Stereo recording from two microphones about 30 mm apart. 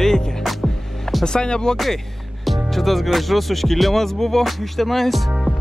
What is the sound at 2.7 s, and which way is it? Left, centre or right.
Music, centre.